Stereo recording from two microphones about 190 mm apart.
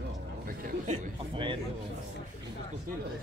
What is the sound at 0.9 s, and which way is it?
Speech, 25° right (ahead or behind).